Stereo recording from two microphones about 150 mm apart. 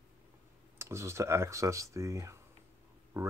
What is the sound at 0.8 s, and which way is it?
Speech, 20° right (ahead or behind).